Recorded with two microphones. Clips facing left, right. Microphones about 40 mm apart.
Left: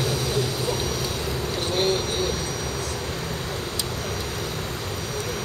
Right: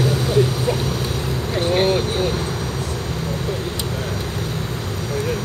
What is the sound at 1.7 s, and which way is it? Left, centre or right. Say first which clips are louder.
Vehicle: right 5 dB; right.